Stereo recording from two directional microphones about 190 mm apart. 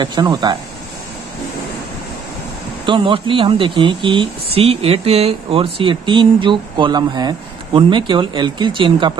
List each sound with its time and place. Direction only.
0.0 s speech: 25° right (ahead or behind)
2.8 s speech: 25° right (ahead or behind)